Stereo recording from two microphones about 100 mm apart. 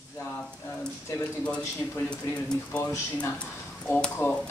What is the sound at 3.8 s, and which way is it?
Speech, 10° left (ahead or behind).